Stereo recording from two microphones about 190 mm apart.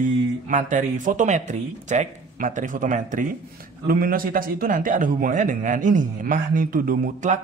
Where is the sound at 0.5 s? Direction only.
45° right (ahead or behind).